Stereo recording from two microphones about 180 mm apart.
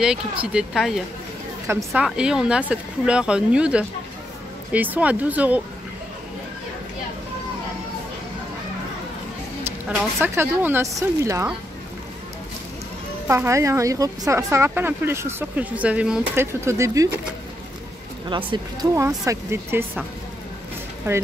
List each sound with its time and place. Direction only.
0.0 s speech: 5° right (ahead or behind)
9.6 s speech: 10° right (ahead or behind)
13.3 s speech: 15° right (ahead or behind)
18.3 s speech: 25° right (ahead or behind)
19.2 s speech: 15° right (ahead or behind)